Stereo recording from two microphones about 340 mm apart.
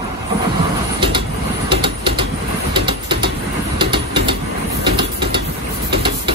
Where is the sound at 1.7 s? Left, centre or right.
Centre.